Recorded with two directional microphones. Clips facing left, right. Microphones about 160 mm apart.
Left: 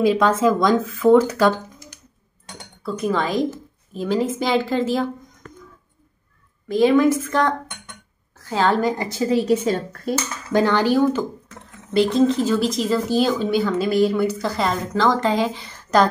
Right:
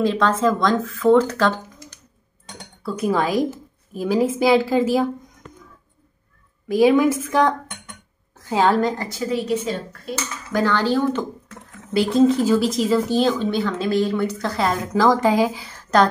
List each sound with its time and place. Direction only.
0.0 s speech: 10° left (ahead or behind)
2.8 s a woman's voice: 5° right (ahead or behind)
6.7 s a woman's voice: 10° right (ahead or behind)
8.9 s a woman's voice: 20° left (ahead or behind)
9.5 s a woman's voice: 40° left (ahead or behind)
10.5 s speech: 20° left (ahead or behind)
11.9 s speech: 5° right (ahead or behind)